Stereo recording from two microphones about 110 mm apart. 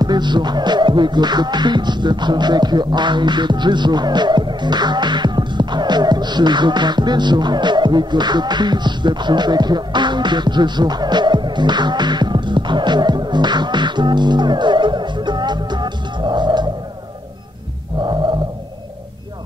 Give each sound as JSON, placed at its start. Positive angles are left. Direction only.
{"t": 0.0, "sound": "music", "side_deg": -40}